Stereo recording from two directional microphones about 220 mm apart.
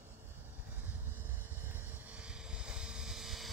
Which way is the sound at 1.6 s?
10° right (ahead or behind).